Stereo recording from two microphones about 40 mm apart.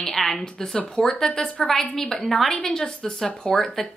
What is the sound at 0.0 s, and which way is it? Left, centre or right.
A woman's voice, centre.